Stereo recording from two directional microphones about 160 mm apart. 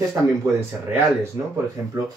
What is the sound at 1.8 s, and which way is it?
Speech, 15° right (ahead or behind).